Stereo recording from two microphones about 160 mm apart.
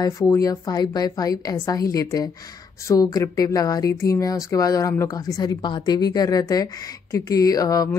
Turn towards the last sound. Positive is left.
turn(degrees=25)  # may be behind; listen again after turning